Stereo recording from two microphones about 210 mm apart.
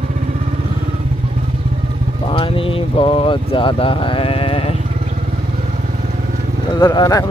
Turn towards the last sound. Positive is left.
turn(degrees=20)  # may be behind; listen again after turning